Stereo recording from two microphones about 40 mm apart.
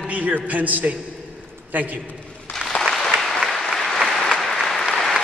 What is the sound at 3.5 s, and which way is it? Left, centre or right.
Applause, centre.